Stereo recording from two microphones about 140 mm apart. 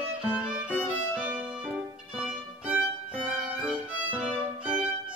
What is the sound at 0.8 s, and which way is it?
Violin, 10° right (ahead or behind).